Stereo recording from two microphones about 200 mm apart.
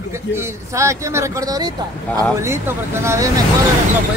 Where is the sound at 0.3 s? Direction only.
15° right (ahead or behind).